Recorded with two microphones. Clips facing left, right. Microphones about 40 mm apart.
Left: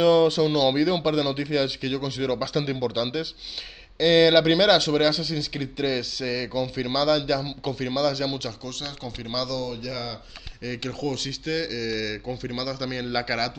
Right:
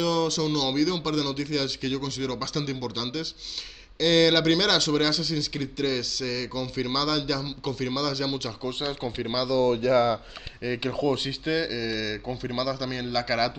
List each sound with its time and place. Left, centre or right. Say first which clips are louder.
0.0 s speech: left 7 dB; left; by 8.5 s centre
8.6 s speech: right 5 dB; right
9.6 s speech: right 10 dB; right
10.6 s speech: right 3 dB; centre